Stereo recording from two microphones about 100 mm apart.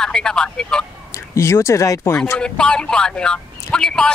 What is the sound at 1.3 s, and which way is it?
Speech, 30° left (ahead or behind).